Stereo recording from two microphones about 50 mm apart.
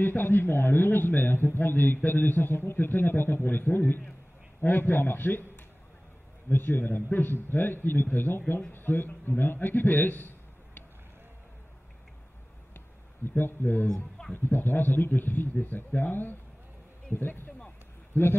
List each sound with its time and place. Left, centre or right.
0.0 s a man's voice: left
6.5 s a man's voice: left
13.4 s a man's voice: left